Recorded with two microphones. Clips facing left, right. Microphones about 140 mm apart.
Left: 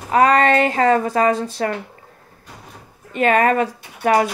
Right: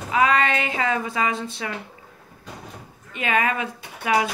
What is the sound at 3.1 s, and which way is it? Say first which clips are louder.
Speech: left 8 dB; 40° left (ahead or behind).